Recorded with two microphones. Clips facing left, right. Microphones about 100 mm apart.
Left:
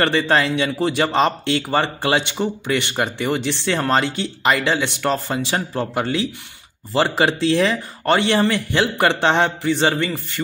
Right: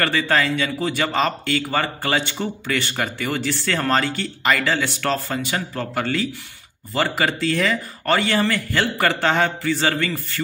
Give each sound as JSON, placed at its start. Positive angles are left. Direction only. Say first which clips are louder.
{"t": 0.0, "sound": "speech", "louder": "left 3 dB", "side_deg": 25}